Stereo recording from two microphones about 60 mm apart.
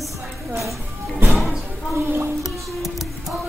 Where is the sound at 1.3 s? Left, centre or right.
Centre.